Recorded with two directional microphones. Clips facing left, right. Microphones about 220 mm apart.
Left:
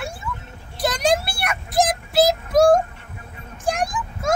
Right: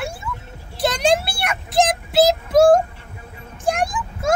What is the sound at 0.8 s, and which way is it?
Vehicle, 25° right (ahead or behind).